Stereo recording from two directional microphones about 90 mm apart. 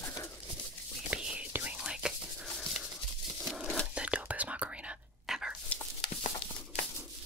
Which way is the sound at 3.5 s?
Centre (ahead or behind).